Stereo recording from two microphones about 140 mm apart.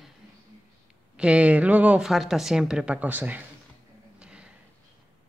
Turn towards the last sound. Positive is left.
turn(degrees=-5)  # may be behind; listen again after turning